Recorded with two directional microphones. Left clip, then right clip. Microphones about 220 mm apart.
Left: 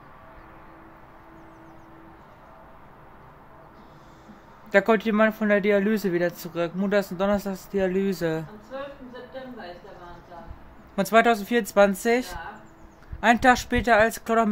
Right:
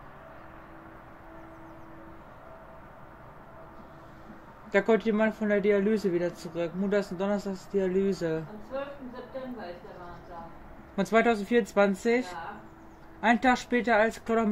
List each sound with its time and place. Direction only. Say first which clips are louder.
4.6 s a man's voice: left 4 dB; 30° left (ahead or behind)
11.0 s speech: left 5 dB; 15° left (ahead or behind)